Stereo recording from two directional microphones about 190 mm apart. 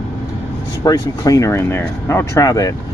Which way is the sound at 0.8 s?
20° left (ahead or behind).